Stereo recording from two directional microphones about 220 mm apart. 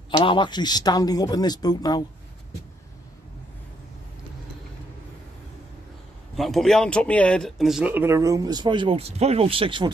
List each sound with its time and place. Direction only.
0.1 s speech: 20° left (ahead or behind)
6.3 s speech: centre (ahead or behind); by 9.8 s 25° right (ahead or behind)